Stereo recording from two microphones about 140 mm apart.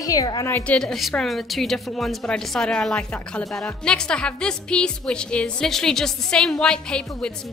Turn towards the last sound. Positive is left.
turn(degrees=5)  # may be behind; listen again after turning